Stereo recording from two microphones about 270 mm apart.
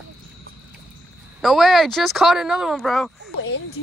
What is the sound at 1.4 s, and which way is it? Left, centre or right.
Speech, centre.